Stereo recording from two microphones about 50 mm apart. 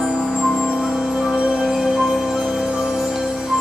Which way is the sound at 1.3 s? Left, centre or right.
Right.